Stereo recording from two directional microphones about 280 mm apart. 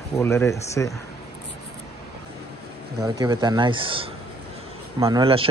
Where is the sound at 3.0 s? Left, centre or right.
Centre.